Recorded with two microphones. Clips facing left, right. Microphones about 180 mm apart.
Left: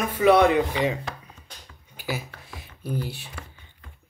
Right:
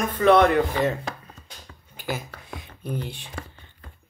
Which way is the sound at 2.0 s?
10° left (ahead or behind).